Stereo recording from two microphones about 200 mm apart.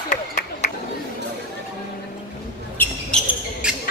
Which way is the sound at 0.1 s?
40° left (ahead or behind).